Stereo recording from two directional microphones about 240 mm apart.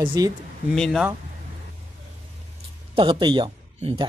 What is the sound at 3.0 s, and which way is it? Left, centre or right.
Speech, centre.